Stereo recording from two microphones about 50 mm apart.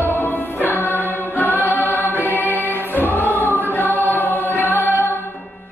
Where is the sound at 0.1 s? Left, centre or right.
Left.